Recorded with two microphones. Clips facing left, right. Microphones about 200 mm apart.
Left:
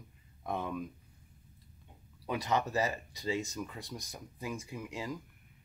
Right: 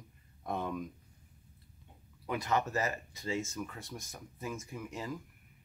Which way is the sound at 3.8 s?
35° left (ahead or behind).